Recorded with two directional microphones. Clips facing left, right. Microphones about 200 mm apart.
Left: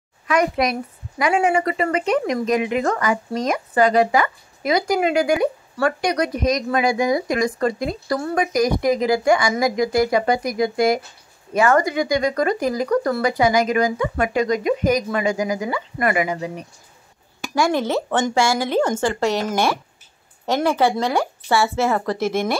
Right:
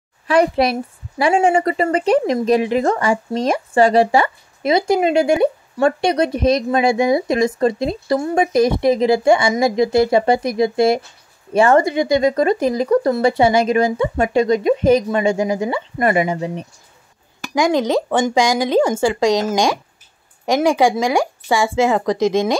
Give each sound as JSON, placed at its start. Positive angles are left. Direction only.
{"t": 0.3, "sound": "a woman's voice", "side_deg": -30}